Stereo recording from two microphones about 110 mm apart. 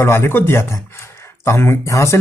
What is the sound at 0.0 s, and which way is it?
Speech, 25° left (ahead or behind).